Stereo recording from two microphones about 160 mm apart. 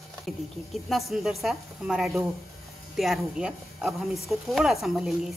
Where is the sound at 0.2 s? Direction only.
Centre (ahead or behind).